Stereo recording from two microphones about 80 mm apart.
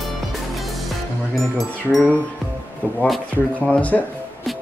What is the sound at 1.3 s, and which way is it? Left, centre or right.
Speech, centre.